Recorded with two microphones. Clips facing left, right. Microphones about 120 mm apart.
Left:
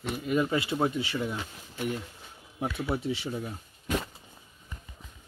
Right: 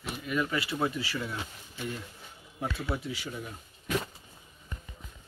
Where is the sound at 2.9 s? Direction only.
25° left (ahead or behind).